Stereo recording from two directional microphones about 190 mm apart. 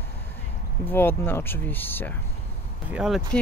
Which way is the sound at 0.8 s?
10° left (ahead or behind).